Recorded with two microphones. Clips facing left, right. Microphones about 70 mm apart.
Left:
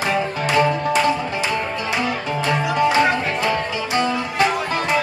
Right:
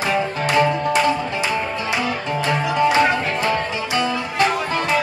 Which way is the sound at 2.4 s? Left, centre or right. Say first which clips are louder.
Even; centre.